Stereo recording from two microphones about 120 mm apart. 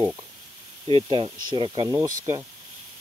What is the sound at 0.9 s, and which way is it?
Speech, 50° right (ahead or behind).